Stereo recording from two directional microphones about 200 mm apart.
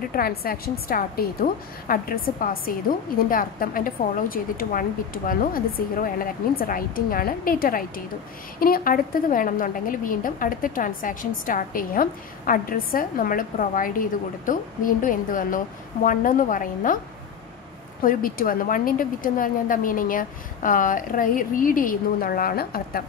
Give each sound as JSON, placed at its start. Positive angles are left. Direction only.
{"t": 0.1, "sound": "a woman's voice", "side_deg": 50}
{"t": 18.0, "sound": "a woman's voice", "side_deg": 45}